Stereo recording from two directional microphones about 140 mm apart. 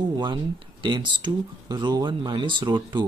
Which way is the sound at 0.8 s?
35° right (ahead or behind).